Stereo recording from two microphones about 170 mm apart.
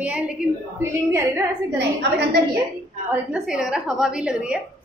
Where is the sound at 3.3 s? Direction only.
5° right (ahead or behind).